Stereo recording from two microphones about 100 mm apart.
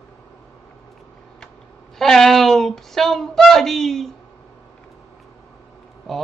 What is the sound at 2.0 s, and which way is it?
Speech, 5° left (ahead or behind).